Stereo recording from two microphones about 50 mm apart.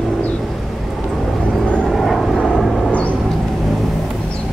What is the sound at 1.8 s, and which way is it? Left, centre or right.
Vehicle, centre.